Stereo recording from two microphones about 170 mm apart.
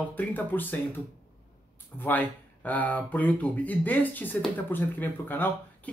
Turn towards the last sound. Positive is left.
turn(degrees=10)  # may be behind; listen again after turning